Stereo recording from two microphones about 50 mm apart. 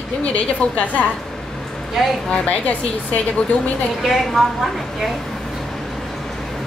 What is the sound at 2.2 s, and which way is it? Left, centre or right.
Speech, left.